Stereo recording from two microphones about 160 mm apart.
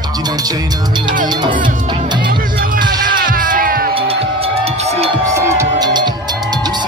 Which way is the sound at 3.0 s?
60° right (ahead or behind).